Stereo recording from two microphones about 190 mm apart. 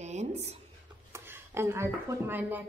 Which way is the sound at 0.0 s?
35° right (ahead or behind).